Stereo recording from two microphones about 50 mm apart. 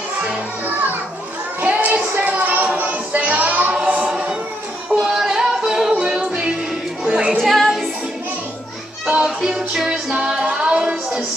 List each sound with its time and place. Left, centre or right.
1.7 s child singing: right
3.7 s choir: right
4.9 s music: centre
7.3 s music: centre
9.2 s music: centre